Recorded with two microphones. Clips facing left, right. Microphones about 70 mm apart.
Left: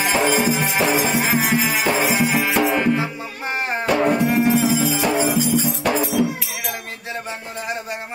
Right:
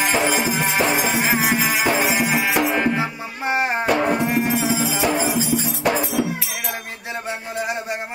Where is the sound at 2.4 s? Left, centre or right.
Centre.